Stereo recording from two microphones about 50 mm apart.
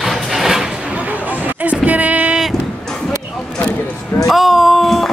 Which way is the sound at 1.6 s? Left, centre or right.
Right.